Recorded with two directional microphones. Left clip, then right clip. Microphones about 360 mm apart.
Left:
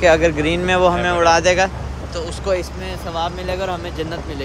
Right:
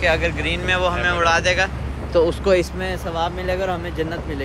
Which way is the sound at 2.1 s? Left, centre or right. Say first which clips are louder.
Right 6 dB; centre.